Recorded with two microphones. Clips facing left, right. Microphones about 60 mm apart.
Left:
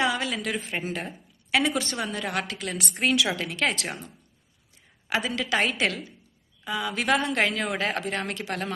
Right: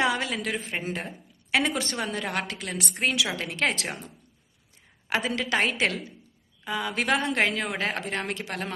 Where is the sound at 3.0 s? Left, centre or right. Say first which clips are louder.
Left 3 dB; centre.